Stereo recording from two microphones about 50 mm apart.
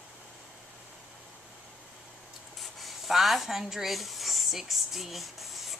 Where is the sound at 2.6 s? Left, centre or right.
Centre.